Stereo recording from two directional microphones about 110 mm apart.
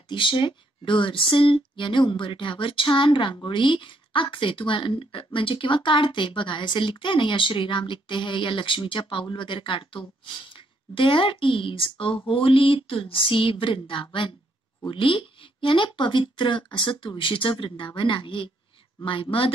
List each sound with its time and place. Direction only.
0.1 s speech: 50° left (ahead or behind)